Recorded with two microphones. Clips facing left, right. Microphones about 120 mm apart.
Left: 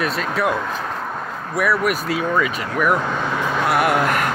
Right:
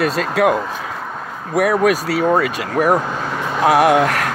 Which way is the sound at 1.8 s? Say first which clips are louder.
Right 5 dB; 90° right.